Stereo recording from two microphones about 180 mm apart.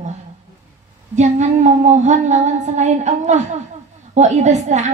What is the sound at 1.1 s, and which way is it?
A woman's voice, 40° right (ahead or behind).